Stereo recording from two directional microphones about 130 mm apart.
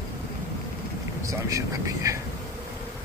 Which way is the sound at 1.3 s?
25° right (ahead or behind).